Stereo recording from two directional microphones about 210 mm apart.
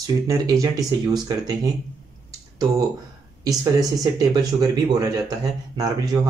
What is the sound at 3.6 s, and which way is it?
Speech, 15° right (ahead or behind).